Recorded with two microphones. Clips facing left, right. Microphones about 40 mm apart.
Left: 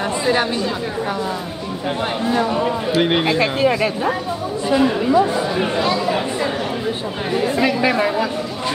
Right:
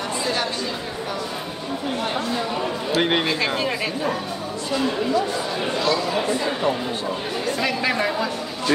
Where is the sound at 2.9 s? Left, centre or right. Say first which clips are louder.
Left 2 dB; centre.